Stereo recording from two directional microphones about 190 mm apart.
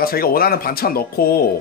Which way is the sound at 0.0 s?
50° left (ahead or behind).